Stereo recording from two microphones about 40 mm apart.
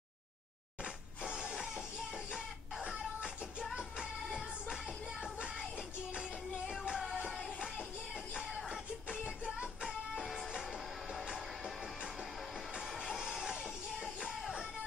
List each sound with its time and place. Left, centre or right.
0.8 s a sound: centre
3.7 s music: right
7.2 s music: centre
8.6 s music: centre
10.1 s music: centre
13.0 s music: centre